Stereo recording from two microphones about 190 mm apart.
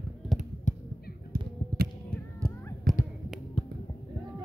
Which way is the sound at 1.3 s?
55° right (ahead or behind).